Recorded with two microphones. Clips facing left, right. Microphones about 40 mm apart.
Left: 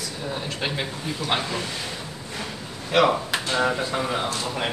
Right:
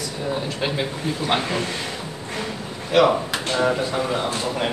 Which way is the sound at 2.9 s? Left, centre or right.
Centre.